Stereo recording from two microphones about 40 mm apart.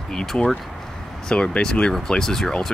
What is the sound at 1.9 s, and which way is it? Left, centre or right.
Speech, centre.